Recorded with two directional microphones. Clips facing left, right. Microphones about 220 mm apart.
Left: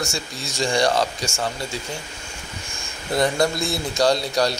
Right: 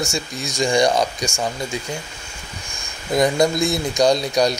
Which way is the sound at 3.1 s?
15° right (ahead or behind).